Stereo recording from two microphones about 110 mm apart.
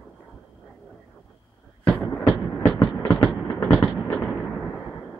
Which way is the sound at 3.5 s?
20° left (ahead or behind).